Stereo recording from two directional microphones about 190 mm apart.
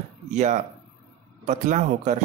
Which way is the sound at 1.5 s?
40° right (ahead or behind).